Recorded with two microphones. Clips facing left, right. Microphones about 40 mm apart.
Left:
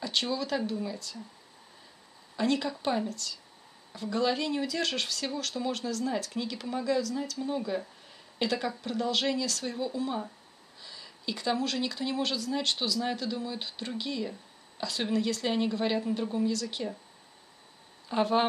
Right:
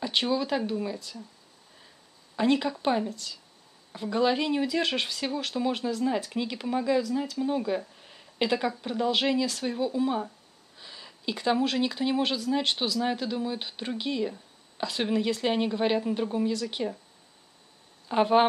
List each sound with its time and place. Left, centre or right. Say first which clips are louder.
0.0 s speech: right 4 dB; centre
2.3 s a woman's voice: right 4 dB; centre
18.0 s speech: right 5 dB; centre